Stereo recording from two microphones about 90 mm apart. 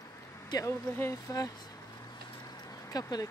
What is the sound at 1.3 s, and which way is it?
Speech, 40° left (ahead or behind).